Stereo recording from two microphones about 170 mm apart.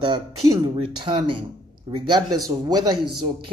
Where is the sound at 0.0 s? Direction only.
25° right (ahead or behind).